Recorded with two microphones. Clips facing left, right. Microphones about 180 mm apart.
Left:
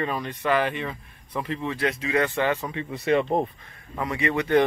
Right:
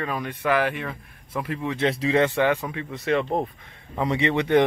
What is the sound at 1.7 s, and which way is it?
Speech, 30° right (ahead or behind).